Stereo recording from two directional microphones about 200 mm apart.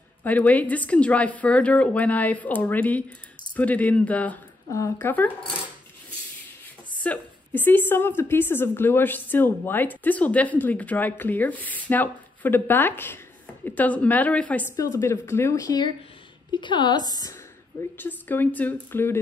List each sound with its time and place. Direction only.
0.2 s a woman's voice: 5° left (ahead or behind)
7.0 s a woman's voice: 10° left (ahead or behind)